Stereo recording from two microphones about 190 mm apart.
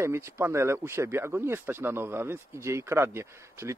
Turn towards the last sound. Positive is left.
turn(degrees=-15)  # may be behind; listen again after turning